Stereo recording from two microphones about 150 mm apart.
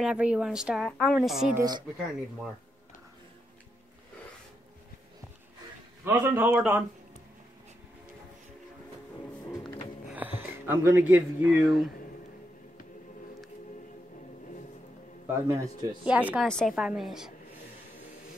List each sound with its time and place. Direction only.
0.0 s a man's voice: 5° right (ahead or behind)
1.6 s a man's voice: 25° right (ahead or behind)
6.0 s a man's voice: 15° right (ahead or behind)
10.7 s a man's voice: 15° right (ahead or behind)
15.4 s a man's voice: 25° right (ahead or behind)
16.0 s a man's voice: 10° right (ahead or behind)
16.4 s a woman's voice: centre (ahead or behind)